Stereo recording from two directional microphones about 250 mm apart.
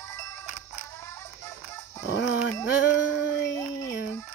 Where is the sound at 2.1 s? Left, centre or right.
Left.